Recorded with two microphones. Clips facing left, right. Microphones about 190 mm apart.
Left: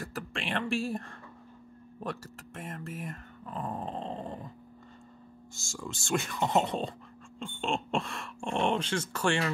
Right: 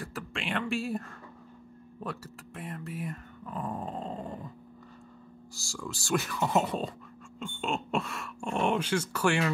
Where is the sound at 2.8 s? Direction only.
45° left (ahead or behind).